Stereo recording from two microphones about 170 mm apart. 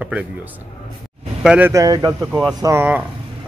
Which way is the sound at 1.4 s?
5° right (ahead or behind).